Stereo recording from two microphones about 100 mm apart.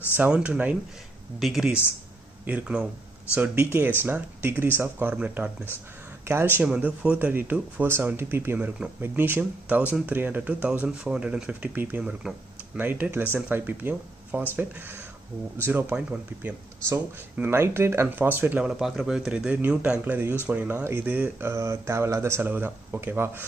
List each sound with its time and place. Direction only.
0.2 s speech: 15° right (ahead or behind)
12.0 s speech: 5° right (ahead or behind)
12.7 s speech: 20° right (ahead or behind)
17.4 s speech: 25° right (ahead or behind)